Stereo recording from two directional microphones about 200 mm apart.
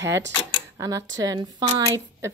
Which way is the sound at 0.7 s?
15° right (ahead or behind).